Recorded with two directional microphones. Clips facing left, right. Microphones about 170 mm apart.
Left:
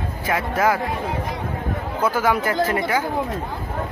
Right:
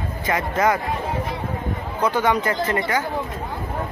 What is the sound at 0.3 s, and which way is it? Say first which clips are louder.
Speech: even; 5° left (ahead or behind).